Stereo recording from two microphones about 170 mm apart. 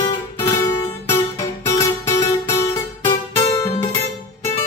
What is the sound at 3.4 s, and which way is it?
Music, 35° left (ahead or behind).